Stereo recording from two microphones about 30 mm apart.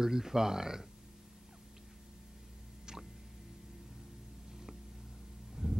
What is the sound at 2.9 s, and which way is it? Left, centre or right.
Squish, right.